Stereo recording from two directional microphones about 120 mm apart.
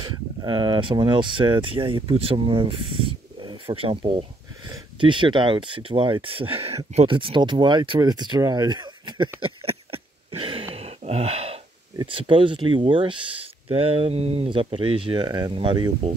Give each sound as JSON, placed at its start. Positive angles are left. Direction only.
{"t": 0.0, "sound": "speech", "side_deg": -40}
{"t": 12.1, "sound": "speech", "side_deg": -45}